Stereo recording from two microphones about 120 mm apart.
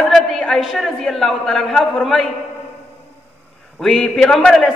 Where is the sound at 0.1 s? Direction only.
5° left (ahead or behind).